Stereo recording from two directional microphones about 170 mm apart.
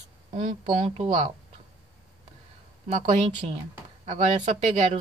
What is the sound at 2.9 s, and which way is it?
Speech, 45° right (ahead or behind).